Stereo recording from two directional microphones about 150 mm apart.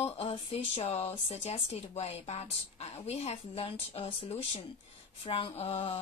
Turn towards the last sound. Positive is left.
turn(degrees=45)  # may be behind; listen again after turning